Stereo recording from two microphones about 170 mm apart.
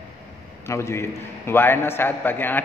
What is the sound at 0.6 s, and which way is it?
A man's voice, 15° left (ahead or behind).